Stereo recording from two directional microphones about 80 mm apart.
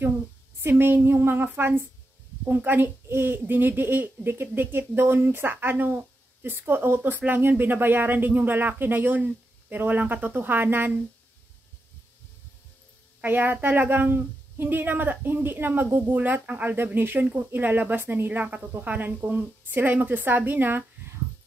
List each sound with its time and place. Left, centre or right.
0.6 s a woman's voice: right
13.2 s a woman's voice: right